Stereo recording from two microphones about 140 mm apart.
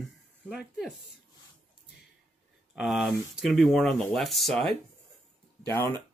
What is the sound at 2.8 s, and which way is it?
Speech, centre (ahead or behind).